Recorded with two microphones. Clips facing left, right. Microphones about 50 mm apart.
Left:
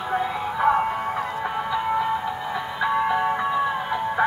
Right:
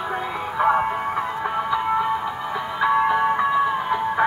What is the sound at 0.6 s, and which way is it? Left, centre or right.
Music, centre.